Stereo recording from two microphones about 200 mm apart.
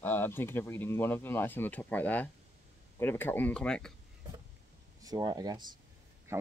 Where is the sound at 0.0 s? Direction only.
10° left (ahead or behind).